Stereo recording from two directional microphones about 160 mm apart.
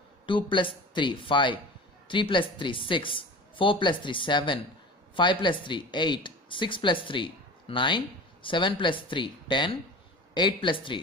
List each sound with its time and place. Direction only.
0.3 s speech: 30° left (ahead or behind)